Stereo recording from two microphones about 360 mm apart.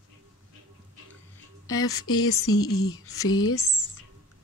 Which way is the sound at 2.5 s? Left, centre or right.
Left.